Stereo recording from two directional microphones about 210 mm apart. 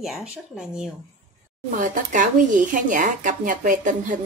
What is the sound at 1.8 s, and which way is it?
Speech, 40° right (ahead or behind).